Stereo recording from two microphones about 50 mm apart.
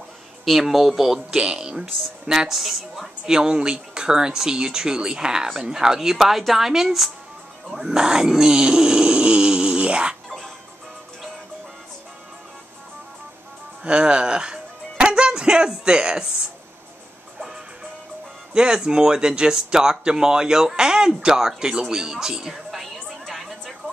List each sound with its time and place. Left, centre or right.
0.5 s speech: centre
1.3 s speech: centre
13.8 s speech: centre
18.5 s speech: centre